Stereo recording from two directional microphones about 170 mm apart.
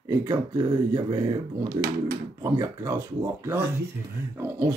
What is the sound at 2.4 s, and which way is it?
Speech, 20° right (ahead or behind).